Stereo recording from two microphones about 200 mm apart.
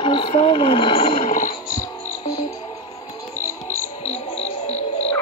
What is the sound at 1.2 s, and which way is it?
Music, 40° left (ahead or behind).